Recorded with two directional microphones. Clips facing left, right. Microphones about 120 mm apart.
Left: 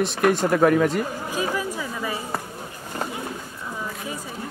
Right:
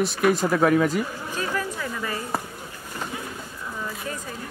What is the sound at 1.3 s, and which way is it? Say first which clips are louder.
Chatter: left 2 dB; 10° left (ahead or behind).